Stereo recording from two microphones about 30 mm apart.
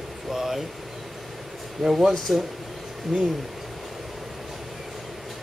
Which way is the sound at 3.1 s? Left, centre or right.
Centre.